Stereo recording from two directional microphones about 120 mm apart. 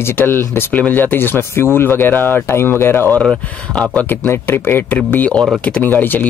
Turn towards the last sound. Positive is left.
turn(degrees=15)  # may be behind; listen again after turning